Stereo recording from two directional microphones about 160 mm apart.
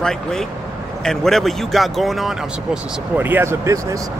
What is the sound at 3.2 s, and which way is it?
Speech, 15° right (ahead or behind).